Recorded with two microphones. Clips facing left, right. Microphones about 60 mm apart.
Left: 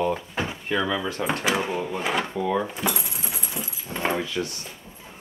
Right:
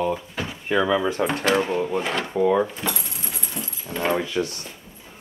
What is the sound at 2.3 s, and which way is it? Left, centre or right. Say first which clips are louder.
Speech: right 5 dB; centre.